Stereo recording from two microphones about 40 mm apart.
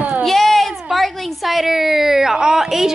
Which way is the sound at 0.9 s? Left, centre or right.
Centre.